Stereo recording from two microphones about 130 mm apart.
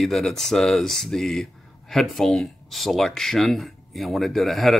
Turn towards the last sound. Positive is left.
turn(degrees=0)  # may be behind; listen again after turning